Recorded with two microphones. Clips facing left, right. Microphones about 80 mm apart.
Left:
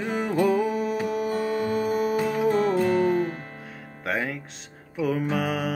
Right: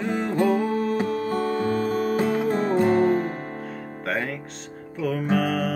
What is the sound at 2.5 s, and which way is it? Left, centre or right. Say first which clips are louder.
Music: right 1 dB; right.